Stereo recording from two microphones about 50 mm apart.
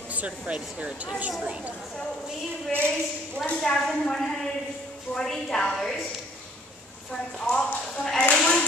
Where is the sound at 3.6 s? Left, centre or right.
Centre.